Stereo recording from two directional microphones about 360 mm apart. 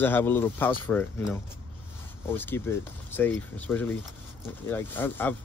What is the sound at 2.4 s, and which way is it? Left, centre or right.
Speech, centre.